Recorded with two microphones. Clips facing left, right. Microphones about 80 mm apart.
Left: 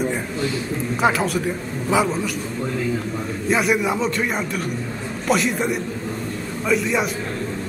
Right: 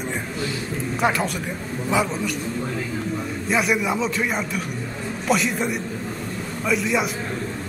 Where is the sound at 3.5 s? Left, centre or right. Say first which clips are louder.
Left 2 dB; centre.